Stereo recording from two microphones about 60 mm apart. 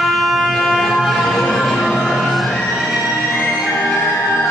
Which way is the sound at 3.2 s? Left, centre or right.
Left.